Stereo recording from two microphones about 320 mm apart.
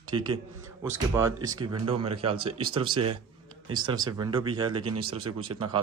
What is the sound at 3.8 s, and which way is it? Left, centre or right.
Speech, centre.